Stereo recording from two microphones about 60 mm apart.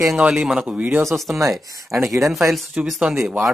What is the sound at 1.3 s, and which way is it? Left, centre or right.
Speech, right.